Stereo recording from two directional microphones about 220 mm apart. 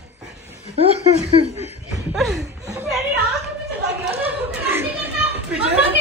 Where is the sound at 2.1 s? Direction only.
Centre (ahead or behind).